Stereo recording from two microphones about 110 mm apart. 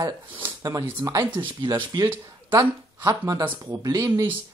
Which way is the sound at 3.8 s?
35° right (ahead or behind).